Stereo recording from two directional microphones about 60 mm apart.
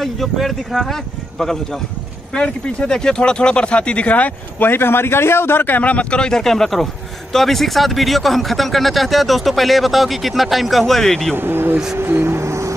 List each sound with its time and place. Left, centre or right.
0.0 s speech: centre; by 4.6 s left
4.6 s a man's voice: left; by 11.3 s centre
11.3 s speech: right